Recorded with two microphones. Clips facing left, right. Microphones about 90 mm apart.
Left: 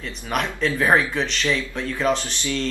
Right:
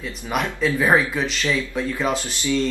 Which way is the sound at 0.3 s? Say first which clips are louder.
Right 1 dB; 5° right (ahead or behind).